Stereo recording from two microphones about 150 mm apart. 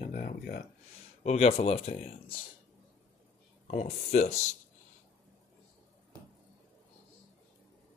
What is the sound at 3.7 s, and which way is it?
Speech, 55° left (ahead or behind).